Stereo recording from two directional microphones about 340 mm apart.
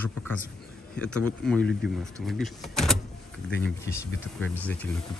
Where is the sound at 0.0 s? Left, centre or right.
Centre.